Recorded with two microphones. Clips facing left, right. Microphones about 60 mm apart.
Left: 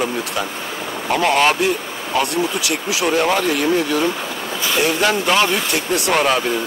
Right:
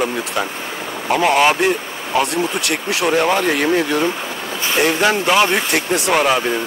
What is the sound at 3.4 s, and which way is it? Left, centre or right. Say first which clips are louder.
Speech: right 1 dB; right.